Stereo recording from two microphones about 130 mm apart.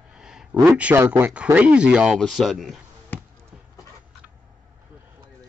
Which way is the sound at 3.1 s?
15° left (ahead or behind).